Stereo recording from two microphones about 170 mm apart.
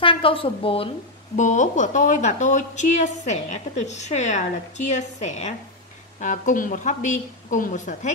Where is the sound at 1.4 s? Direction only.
45° left (ahead or behind).